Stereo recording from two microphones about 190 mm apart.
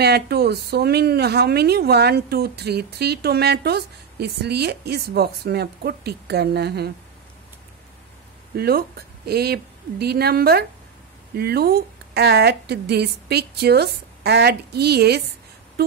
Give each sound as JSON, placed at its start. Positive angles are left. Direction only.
{"t": 0.0, "sound": "a woman's voice", "side_deg": -60}
{"t": 8.5, "sound": "a woman's voice", "side_deg": -55}